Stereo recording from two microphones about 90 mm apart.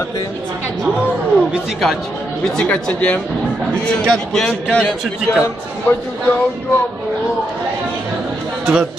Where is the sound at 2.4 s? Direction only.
10° left (ahead or behind).